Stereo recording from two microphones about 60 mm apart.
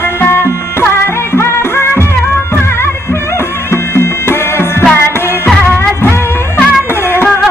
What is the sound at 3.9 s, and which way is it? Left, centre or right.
Music, left.